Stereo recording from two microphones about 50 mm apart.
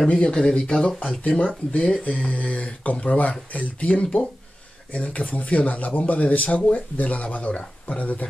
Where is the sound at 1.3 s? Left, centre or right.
Left.